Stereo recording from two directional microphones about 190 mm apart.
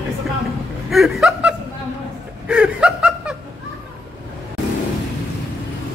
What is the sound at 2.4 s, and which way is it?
Snicker, 5° right (ahead or behind).